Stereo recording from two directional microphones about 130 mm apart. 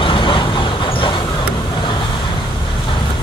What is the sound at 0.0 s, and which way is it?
Vehicle, 40° left (ahead or behind).